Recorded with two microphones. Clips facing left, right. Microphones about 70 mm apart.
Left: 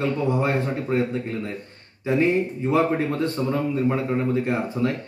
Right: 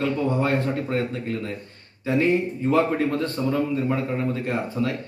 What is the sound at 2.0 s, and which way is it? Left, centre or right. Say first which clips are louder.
Speech: even; left.